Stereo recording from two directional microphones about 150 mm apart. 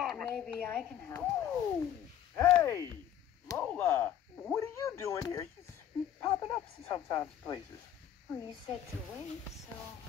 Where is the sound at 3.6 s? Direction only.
10° left (ahead or behind).